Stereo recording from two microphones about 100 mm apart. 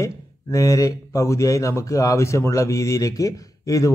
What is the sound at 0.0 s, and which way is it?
Speech, 30° left (ahead or behind).